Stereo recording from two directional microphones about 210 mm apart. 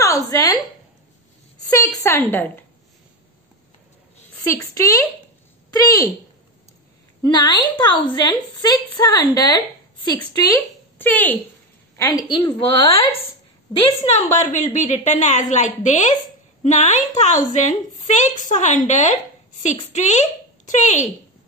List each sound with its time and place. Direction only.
0.0 s a woman's voice: 15° left (ahead or behind)
1.7 s a woman's voice: 15° left (ahead or behind)
4.7 s a woman's voice: 15° left (ahead or behind)
7.2 s a woman's voice: 20° left (ahead or behind)
12.0 s a woman's voice: 20° left (ahead or behind); by 21.1 s 35° left (ahead or behind)